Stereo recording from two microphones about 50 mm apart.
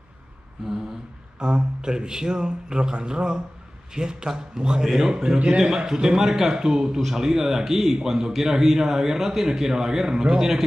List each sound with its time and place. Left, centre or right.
1.4 s a man's voice: centre